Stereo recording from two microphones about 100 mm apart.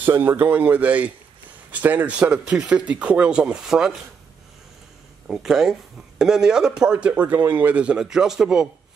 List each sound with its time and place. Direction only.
0.0 s speech: 20° right (ahead or behind); by 3.9 s 5° right (ahead or behind)
5.3 s speech: 5° right (ahead or behind)